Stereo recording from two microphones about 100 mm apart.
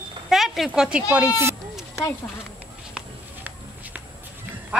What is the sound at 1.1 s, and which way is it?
Speech, 25° right (ahead or behind).